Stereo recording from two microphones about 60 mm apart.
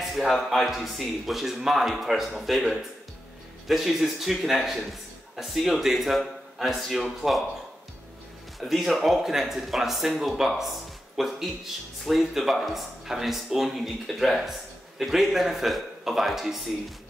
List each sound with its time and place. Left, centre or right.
0.0 s speech: centre
8.5 s speech: centre